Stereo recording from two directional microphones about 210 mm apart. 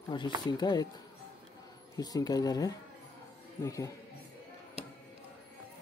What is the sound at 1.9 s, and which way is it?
Speech, 20° left (ahead or behind).